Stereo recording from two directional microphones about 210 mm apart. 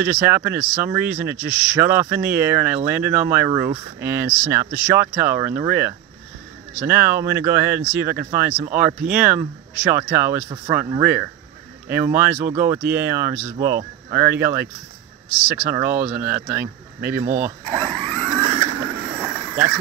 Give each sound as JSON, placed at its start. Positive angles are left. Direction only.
{"t": 0.0, "sound": "speech", "side_deg": -10}
{"t": 17.6, "sound": "a sound", "side_deg": -25}
{"t": 19.5, "sound": "speech", "side_deg": -10}